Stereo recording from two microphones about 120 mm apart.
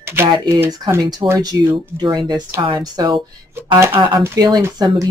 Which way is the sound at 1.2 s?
40° right (ahead or behind).